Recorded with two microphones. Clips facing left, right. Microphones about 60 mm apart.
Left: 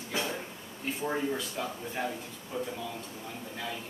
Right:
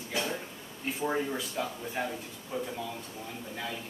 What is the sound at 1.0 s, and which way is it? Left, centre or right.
Speech, centre.